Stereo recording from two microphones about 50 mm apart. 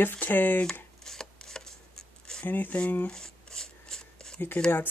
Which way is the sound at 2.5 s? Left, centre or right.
Left.